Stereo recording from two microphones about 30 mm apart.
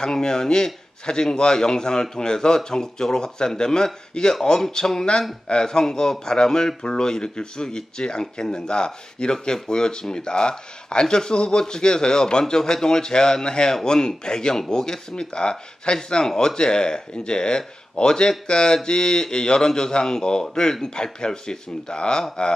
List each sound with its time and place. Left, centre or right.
0.0 s speech: left